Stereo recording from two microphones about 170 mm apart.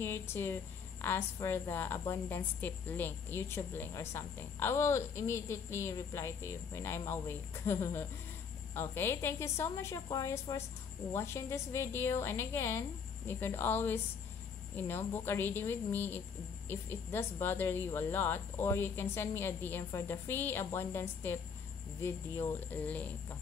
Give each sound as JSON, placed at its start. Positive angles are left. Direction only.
{"t": 0.0, "sound": "a woman's voice", "side_deg": 15}